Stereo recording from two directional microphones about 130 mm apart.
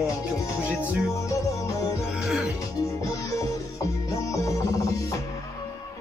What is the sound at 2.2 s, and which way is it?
Music, 5° right (ahead or behind).